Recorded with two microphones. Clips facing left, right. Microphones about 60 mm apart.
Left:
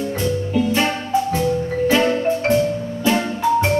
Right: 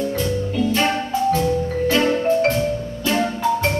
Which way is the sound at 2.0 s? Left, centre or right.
Centre.